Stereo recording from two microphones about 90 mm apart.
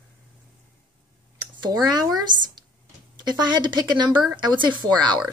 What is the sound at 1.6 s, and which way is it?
Speech, 50° right (ahead or behind).